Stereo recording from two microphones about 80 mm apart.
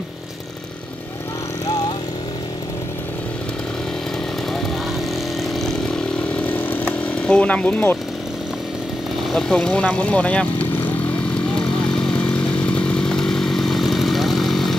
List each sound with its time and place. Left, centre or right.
5.5 s vehicle: centre
6.4 s chainsaw: left
7.1 s speech: centre
9.3 s speech: centre
12.3 s chainsaw: centre